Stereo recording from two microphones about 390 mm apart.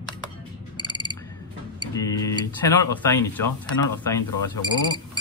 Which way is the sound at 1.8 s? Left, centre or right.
Centre.